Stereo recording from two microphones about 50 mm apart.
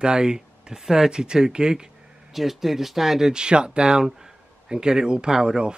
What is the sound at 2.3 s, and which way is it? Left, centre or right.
Speech, centre.